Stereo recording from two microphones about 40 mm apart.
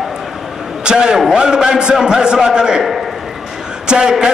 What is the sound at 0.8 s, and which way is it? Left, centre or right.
A man's voice, centre.